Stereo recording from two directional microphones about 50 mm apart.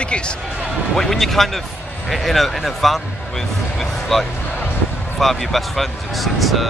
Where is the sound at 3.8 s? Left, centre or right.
Centre.